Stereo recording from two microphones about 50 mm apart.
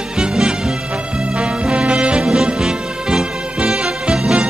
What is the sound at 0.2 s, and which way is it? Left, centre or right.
Music, centre.